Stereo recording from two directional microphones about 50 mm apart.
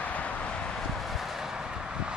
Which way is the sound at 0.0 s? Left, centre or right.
Left.